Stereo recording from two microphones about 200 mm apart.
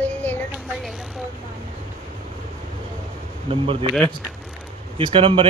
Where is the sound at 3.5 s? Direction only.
25° right (ahead or behind).